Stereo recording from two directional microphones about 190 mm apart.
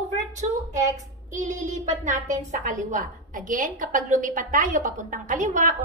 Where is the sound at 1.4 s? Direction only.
40° right (ahead or behind).